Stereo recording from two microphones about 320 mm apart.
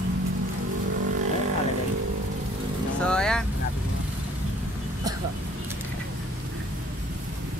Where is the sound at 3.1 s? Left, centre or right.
Centre.